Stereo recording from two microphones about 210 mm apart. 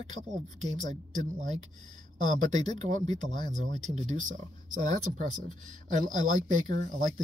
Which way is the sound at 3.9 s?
35° right (ahead or behind).